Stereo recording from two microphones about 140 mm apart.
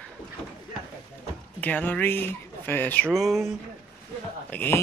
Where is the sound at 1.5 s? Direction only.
10° left (ahead or behind).